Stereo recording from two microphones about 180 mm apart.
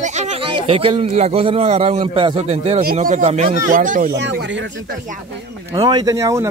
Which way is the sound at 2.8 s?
50° right (ahead or behind).